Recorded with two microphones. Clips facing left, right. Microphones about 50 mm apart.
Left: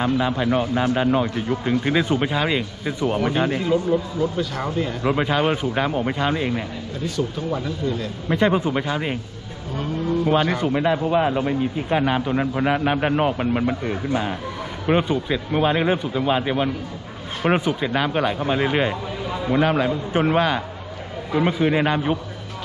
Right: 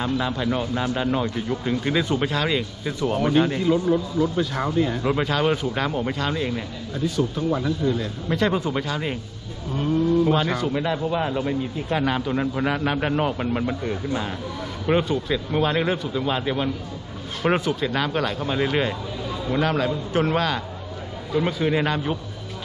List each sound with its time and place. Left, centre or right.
0.0 s speech: left
8.3 s speech: left
10.2 s speech: centre